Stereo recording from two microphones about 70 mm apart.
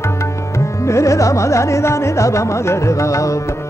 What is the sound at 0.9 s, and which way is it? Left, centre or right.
Carnatic music, left.